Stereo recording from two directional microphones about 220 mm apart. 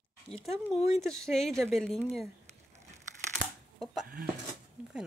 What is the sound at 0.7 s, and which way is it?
Speech, 30° left (ahead or behind).